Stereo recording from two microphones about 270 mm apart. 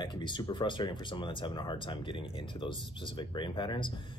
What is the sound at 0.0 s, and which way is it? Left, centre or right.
Speech, centre.